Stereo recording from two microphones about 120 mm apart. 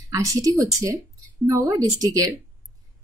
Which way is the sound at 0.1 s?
25° right (ahead or behind).